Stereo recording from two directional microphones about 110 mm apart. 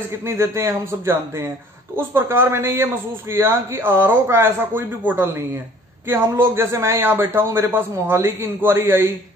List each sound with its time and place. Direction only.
0.2 s speech: 25° right (ahead or behind)